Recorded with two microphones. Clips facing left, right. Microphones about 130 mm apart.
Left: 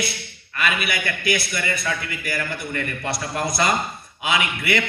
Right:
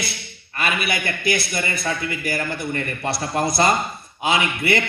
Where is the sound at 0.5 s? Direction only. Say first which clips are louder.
Right 1 dB; 35° right (ahead or behind).